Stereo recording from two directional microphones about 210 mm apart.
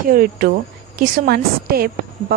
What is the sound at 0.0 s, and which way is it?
Speech, 40° right (ahead or behind).